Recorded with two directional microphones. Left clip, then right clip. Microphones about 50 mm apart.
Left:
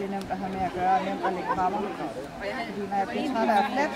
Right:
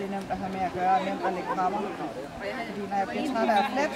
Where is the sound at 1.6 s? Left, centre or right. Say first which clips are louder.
Left 1 dB; centre.